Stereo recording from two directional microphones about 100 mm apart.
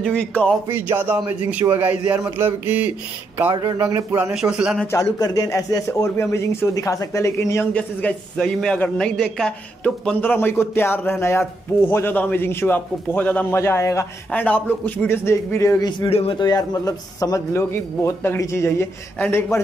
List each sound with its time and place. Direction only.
0.0 s a man's voice: 15° left (ahead or behind)
0.7 s a man's voice: 20° right (ahead or behind)
3.4 s speech: 50° right (ahead or behind)
3.7 s speech: 30° right (ahead or behind)
4.2 s a man's voice: 5° right (ahead or behind)
4.9 s a man's voice: 35° left (ahead or behind)
7.7 s a man's voice: 15° left (ahead or behind)
10.2 s a man's voice: 20° left (ahead or behind)
13.6 s a man's voice: 25° left (ahead or behind)
14.3 s a man's voice: 15° left (ahead or behind)
15.0 s a man's voice: 25° left (ahead or behind)
16.1 s speech: 80° left
16.3 s a man's voice: 45° left (ahead or behind); by 19.6 s 20° left (ahead or behind)